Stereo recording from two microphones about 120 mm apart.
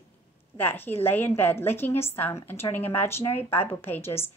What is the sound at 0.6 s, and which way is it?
A woman's voice, 15° left (ahead or behind).